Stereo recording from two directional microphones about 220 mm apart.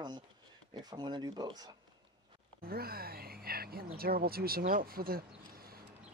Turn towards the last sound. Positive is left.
turn(degrees=-40)  # may be behind; listen again after turning